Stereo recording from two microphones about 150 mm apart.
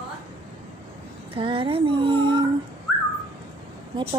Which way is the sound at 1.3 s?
35° right (ahead or behind).